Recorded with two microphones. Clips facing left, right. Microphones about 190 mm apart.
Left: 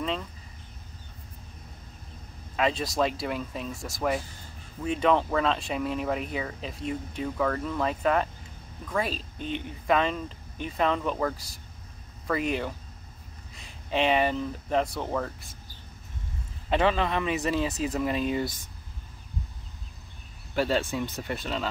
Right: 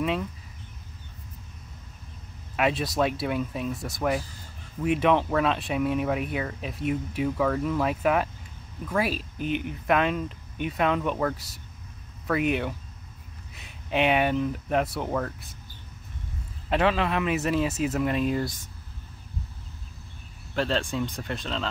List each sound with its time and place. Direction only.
2.5 s speech: 5° right (ahead or behind)
9.4 s speech: 30° left (ahead or behind)
9.8 s speech: 5° right (ahead or behind)
16.6 s speech: centre (ahead or behind)
20.5 s speech: 5° left (ahead or behind)